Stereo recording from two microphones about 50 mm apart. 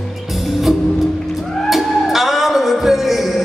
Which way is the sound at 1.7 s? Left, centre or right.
Centre.